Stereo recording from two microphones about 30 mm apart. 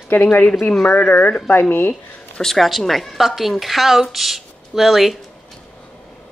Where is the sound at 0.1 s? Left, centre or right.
Left.